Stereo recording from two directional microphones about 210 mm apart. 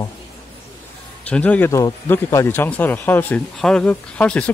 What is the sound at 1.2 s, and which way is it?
Speech, 5° left (ahead or behind).